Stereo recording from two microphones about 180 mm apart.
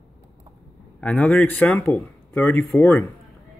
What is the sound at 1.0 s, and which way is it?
Speech, 5° left (ahead or behind).